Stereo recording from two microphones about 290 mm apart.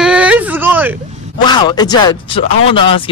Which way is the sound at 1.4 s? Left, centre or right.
Centre.